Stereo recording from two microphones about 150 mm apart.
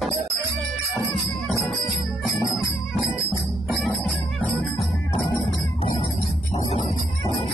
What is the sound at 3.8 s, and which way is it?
Music, 5° left (ahead or behind).